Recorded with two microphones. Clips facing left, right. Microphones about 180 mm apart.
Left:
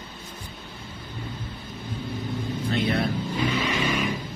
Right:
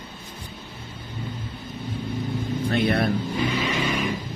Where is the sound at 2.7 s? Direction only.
60° right (ahead or behind).